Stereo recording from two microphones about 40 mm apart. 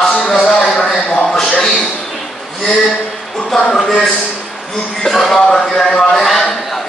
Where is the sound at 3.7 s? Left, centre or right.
Centre.